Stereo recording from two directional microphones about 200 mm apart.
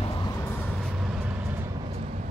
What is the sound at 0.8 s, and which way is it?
Vehicle, 5° right (ahead or behind).